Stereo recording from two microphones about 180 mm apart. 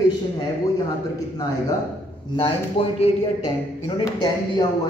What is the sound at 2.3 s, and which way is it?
Speech, 30° left (ahead or behind).